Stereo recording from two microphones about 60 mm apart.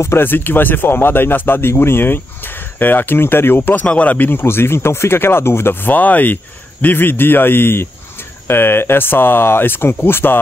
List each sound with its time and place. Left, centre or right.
0.2 s speech: left
3.8 s speech: left
4.3 s speech: left